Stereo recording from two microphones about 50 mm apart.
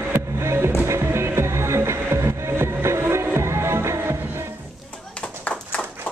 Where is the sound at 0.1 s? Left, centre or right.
Right.